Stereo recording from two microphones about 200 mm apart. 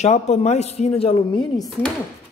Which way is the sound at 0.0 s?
35° left (ahead or behind).